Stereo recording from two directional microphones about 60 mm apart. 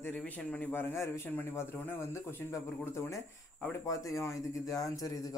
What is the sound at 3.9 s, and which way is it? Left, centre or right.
Speech, left.